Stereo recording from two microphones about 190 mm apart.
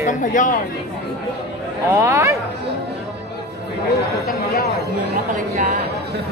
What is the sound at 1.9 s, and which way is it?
Speech, 15° right (ahead or behind).